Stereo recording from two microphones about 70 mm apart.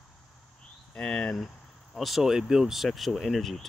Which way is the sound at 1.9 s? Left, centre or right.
Centre.